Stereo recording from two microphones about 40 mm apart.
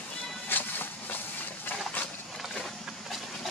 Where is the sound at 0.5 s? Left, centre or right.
Left.